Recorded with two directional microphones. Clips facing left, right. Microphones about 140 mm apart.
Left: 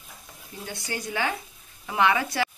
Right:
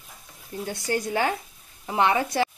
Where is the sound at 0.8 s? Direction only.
40° right (ahead or behind).